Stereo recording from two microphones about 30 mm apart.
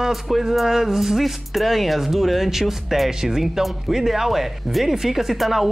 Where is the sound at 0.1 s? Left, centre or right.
Centre.